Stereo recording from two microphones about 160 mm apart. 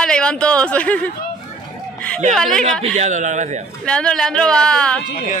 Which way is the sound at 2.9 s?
50° right (ahead or behind).